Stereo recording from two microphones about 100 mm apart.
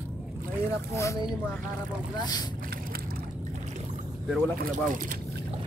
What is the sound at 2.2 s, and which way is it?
Speech, 45° left (ahead or behind).